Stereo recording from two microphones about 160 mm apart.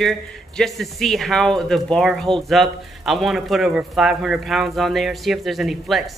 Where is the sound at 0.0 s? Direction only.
Centre (ahead or behind).